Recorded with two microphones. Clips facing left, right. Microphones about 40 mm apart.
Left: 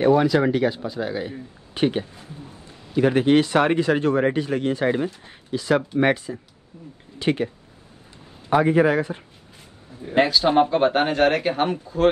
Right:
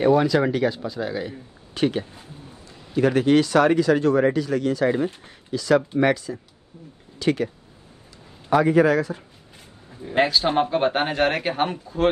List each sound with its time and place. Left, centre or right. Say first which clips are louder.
0.0 s speech: left 1 dB; centre
1.3 s speech: left 2 dB; left
8.5 s speech: even; left
10.1 s speech: left 2 dB; centre